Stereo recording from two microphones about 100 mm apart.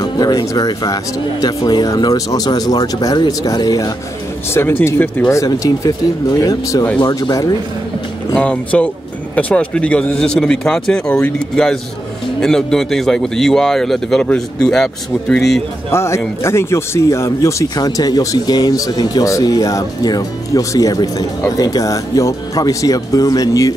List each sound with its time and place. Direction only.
0.0 s speech: 45° left (ahead or behind)
4.6 s speech: 25° left (ahead or behind)
5.3 s speech: 35° left (ahead or behind)
8.4 s speech: 10° left (ahead or behind)
15.9 s speech: 25° left (ahead or behind)